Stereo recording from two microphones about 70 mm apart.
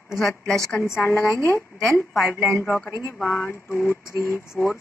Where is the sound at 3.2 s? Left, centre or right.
Left.